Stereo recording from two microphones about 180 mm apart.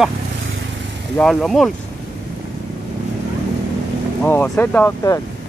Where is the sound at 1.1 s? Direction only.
Centre (ahead or behind).